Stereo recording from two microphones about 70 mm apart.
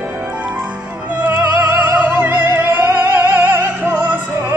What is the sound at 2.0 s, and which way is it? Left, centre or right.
Music, right.